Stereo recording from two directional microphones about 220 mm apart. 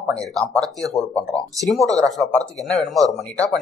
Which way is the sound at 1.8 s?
15° right (ahead or behind).